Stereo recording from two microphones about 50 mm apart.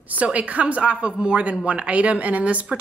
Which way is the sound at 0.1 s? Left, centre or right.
Right.